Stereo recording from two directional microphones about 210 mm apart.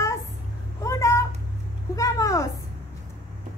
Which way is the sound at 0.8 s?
15° left (ahead or behind).